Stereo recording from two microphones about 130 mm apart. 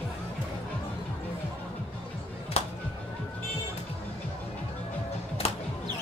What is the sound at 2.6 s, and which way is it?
Music, 55° left (ahead or behind).